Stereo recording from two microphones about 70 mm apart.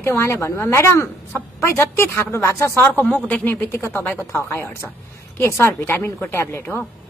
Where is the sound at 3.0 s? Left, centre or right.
Centre.